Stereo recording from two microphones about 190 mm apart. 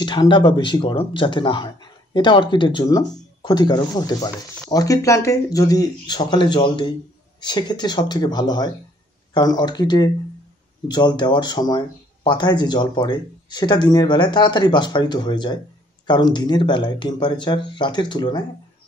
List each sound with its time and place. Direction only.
0.0 s speech: 25° left (ahead or behind)